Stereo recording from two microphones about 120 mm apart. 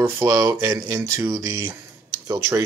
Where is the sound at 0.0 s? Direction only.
20° right (ahead or behind).